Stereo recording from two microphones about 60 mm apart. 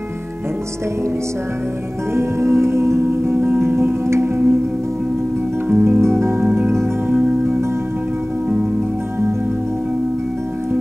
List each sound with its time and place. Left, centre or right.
2.1 s music: right
5.7 s music: right
5.9 s music: right
7.1 s music: right